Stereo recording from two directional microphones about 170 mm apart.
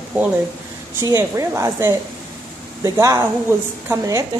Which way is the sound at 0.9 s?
15° right (ahead or behind).